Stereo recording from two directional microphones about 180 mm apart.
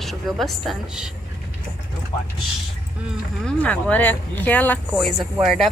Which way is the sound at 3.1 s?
5° left (ahead or behind).